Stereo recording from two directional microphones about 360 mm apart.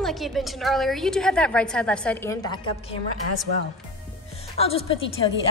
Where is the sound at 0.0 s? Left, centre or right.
Centre.